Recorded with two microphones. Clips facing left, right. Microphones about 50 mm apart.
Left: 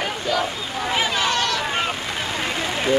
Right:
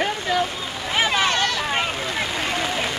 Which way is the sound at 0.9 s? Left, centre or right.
Right.